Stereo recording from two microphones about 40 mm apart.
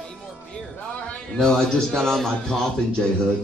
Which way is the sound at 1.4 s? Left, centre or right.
Centre.